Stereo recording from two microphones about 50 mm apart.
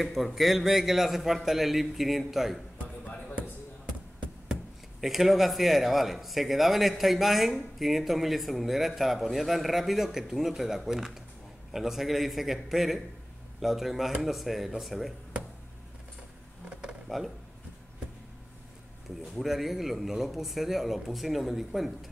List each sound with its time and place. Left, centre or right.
0.0 s a man's voice: centre
3.0 s basketball bounce: left
5.0 s a man's voice: centre
19.0 s a man's voice: centre